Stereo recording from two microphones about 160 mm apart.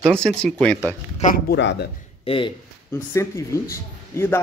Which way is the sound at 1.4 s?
90° left.